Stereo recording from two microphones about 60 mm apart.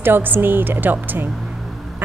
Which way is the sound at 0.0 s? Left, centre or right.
Right.